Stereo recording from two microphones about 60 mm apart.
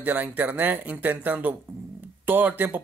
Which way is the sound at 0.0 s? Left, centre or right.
Right.